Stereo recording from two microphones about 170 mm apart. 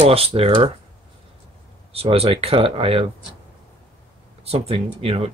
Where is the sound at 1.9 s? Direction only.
35° right (ahead or behind).